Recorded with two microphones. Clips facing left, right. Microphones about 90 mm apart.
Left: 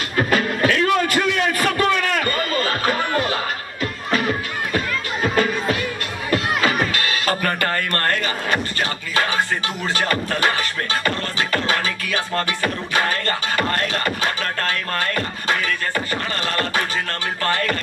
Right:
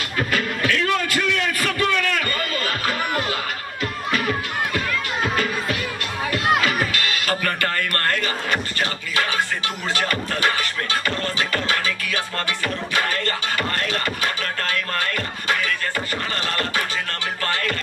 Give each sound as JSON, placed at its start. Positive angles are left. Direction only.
{"t": 0.2, "sound": "music", "side_deg": 35}
{"t": 5.3, "sound": "music", "side_deg": 35}
{"t": 9.9, "sound": "music", "side_deg": 35}